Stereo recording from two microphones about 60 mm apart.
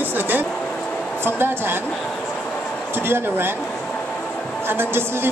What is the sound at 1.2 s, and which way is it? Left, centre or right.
Speech, right.